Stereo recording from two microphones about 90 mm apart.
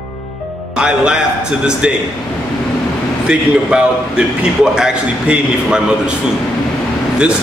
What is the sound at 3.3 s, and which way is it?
A man's voice, 10° right (ahead or behind).